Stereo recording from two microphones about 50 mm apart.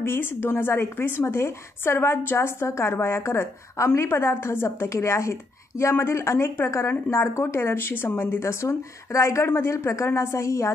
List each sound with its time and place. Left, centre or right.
0.0 s a woman's voice: left
5.9 s speech: left